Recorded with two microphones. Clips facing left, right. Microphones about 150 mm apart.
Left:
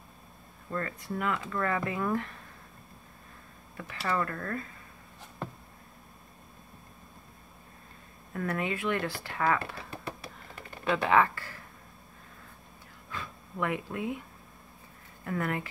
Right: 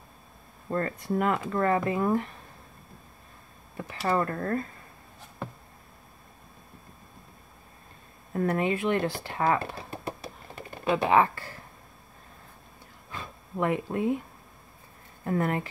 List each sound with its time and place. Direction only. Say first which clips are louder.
0.7 s speech: right 6 dB; 35° right (ahead or behind)
3.7 s speech: right 5 dB; 25° right (ahead or behind)
8.3 s speech: right 6 dB; 30° right (ahead or behind)
13.1 s a sound: right 2 dB; 30° right (ahead or behind)
15.2 s speech: right 5 dB; 30° right (ahead or behind)